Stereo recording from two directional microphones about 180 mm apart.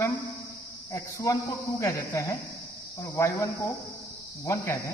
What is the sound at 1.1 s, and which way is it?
Speech, 20° left (ahead or behind).